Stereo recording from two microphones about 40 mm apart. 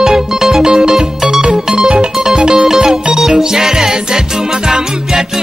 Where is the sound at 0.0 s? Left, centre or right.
Centre.